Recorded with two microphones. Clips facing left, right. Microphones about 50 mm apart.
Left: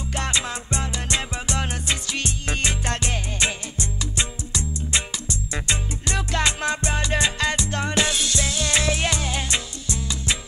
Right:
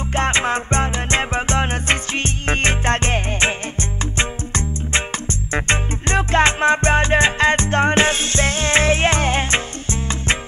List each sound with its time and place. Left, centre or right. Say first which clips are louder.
0.1 s music: right 8 dB; right